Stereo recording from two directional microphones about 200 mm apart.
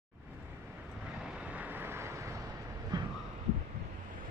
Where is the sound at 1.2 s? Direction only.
5° right (ahead or behind).